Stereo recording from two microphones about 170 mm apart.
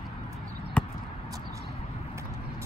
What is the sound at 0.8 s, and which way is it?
Basketball bounce, 5° left (ahead or behind).